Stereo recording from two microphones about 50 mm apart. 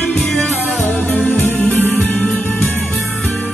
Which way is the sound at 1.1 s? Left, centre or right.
Left.